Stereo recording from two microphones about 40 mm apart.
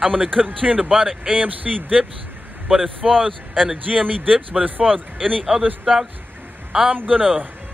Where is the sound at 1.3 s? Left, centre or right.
Right.